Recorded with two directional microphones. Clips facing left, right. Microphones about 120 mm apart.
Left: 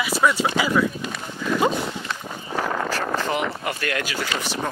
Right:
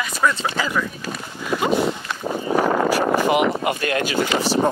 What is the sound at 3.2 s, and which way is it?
Speech, 15° right (ahead or behind).